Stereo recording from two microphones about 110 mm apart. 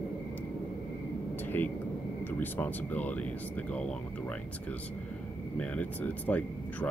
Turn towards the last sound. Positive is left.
turn(degrees=15)  # may be behind; listen again after turning